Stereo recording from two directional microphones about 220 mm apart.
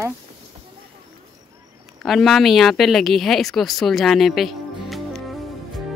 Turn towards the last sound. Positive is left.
turn(degrees=0)  # may be behind; listen again after turning